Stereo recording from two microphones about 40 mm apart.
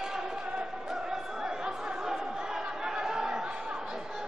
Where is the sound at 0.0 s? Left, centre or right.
Centre.